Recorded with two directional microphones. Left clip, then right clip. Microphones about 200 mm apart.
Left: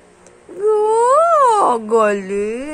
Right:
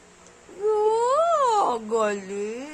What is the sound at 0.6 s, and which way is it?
Wail, 25° left (ahead or behind).